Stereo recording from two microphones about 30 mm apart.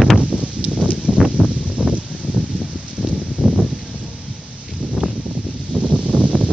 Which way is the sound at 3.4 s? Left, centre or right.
Right.